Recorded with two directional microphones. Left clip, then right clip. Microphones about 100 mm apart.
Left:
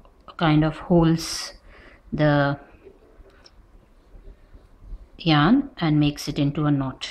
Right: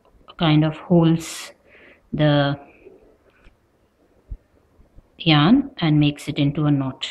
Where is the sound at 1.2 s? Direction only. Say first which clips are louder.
Left 3 dB; 10° left (ahead or behind).